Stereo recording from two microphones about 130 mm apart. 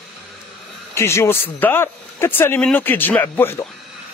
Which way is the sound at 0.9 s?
20° left (ahead or behind).